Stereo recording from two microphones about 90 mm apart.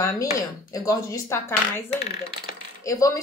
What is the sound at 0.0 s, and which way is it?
Speech, 40° left (ahead or behind).